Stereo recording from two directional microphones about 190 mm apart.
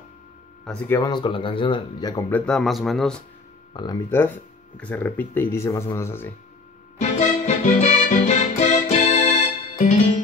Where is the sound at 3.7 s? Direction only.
20° left (ahead or behind).